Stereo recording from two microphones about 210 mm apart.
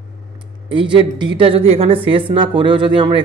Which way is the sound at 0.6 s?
25° right (ahead or behind).